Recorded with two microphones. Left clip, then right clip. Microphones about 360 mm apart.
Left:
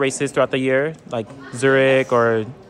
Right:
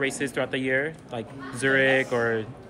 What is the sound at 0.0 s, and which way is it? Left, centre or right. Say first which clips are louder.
Speech: left 8 dB; centre.